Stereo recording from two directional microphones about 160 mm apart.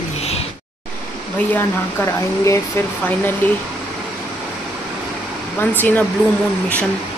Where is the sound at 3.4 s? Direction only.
10° left (ahead or behind).